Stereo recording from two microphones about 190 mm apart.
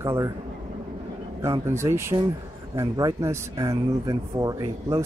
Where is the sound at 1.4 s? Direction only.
15° right (ahead or behind).